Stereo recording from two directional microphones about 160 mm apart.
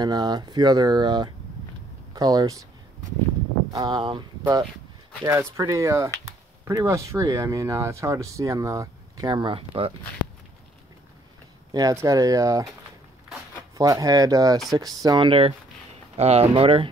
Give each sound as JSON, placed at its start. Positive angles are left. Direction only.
{"t": 0.0, "sound": "speech", "side_deg": -25}
{"t": 3.7, "sound": "speech", "side_deg": -25}
{"t": 11.7, "sound": "speech", "side_deg": -20}
{"t": 13.7, "sound": "speech", "side_deg": -20}